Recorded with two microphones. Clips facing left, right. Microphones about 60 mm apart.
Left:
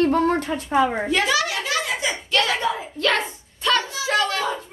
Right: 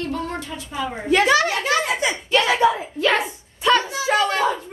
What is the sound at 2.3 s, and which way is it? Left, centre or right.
A woman's voice, centre.